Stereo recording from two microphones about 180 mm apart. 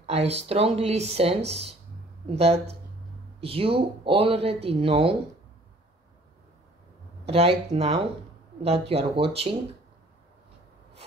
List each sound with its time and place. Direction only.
0.0 s speech: 35° right (ahead or behind)
7.2 s speech: 35° right (ahead or behind)